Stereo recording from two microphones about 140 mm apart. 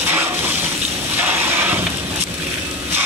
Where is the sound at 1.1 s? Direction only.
15° right (ahead or behind).